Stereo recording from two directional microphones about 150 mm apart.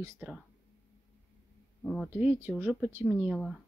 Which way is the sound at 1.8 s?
5° left (ahead or behind).